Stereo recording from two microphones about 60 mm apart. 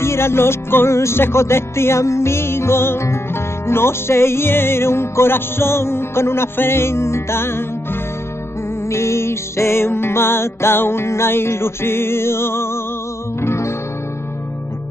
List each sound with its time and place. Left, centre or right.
0.0 s music: left